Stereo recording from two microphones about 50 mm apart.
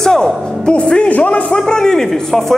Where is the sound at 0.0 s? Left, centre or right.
Centre.